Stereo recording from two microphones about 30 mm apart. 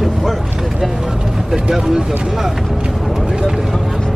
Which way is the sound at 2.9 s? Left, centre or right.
Centre.